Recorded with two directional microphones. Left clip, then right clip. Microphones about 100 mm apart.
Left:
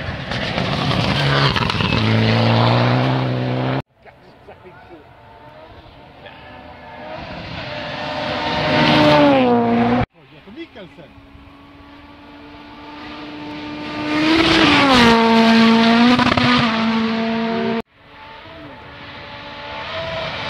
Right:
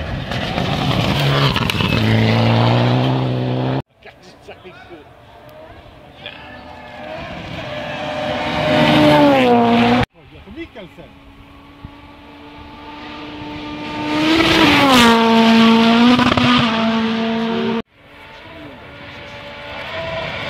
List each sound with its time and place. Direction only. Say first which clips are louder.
0.0 s vehicle: even; 30° left (ahead or behind)
1.5 s vehicle: even; centre (ahead or behind)
1.8 s vehicle: right 1 dB; 20° right (ahead or behind)
7.4 s vehicle: right 1 dB; 15° left (ahead or behind)
12.8 s vehicle: right 1 dB; 10° right (ahead or behind)
14.6 s vehicle: right 2 dB; 30° right (ahead or behind)
15.0 s vehicle: right 1 dB; 25° left (ahead or behind)
15.2 s vehicle: right 1 dB; 5° left (ahead or behind)
17.1 s vehicle: right 1 dB; 25° left (ahead or behind)
19.1 s vehicle: even; 5° left (ahead or behind)